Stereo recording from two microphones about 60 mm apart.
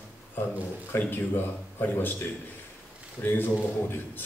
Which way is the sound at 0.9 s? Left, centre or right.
Left.